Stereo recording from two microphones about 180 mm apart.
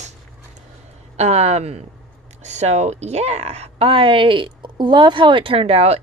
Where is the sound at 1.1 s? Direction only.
35° right (ahead or behind).